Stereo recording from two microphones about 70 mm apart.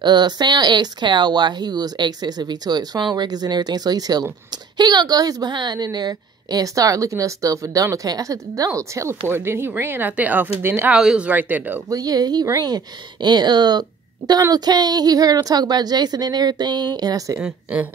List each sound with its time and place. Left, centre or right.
0.0 s speech: right
5.9 s a woman's voice: right
9.3 s speech: right
11.9 s a woman's voice: right